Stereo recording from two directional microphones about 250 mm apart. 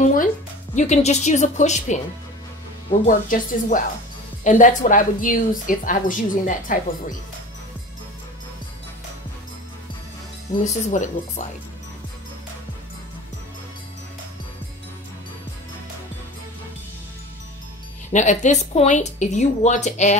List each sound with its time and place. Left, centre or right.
0.0 s speech: left
3.1 s a woman's voice: left
10.6 s speech: left
18.1 s speech: left